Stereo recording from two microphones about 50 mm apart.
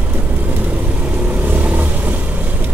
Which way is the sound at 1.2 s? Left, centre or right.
Right.